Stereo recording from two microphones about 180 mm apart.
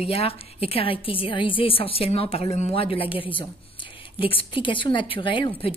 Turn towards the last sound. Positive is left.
turn(degrees=25)  # may be behind; listen again after turning